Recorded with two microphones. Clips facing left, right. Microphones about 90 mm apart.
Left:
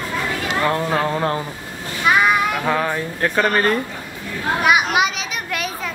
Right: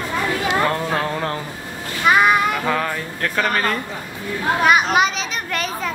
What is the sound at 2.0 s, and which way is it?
Child singing, centre (ahead or behind).